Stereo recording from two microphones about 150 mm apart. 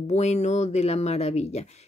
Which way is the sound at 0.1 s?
50° left (ahead or behind).